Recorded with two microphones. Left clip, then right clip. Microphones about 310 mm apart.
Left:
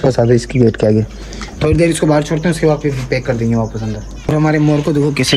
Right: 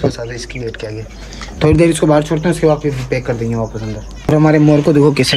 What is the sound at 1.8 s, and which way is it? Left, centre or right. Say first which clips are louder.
Speech: even; centre.